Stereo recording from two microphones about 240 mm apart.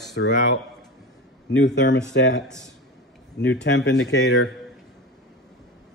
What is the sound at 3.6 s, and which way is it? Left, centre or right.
Speech, left.